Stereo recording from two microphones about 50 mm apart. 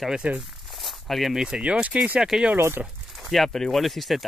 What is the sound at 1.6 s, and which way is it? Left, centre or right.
Speech, right.